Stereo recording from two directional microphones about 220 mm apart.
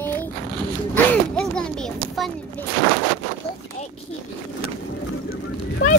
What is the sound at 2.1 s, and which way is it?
Speech, centre (ahead or behind).